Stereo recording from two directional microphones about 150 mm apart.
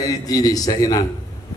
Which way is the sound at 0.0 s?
25° left (ahead or behind).